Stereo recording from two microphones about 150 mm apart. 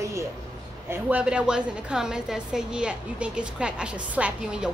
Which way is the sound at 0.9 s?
10° right (ahead or behind).